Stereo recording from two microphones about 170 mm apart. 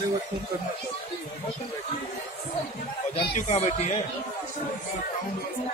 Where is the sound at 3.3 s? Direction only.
40° left (ahead or behind).